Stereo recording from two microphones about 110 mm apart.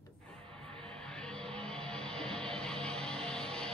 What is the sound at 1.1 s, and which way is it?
Music, 5° left (ahead or behind).